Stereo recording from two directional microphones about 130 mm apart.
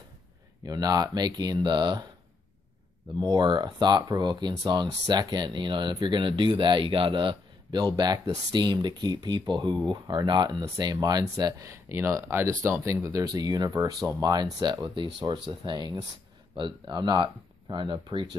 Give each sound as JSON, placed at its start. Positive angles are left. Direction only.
{"t": 0.7, "sound": "speech", "side_deg": -30}
{"t": 3.3, "sound": "speech", "side_deg": -35}